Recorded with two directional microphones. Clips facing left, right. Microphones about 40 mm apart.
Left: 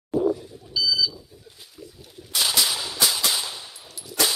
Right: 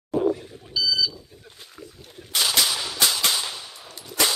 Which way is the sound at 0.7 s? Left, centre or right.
Centre.